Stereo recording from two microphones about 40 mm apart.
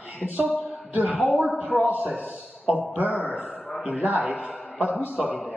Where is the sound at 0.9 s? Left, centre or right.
Right.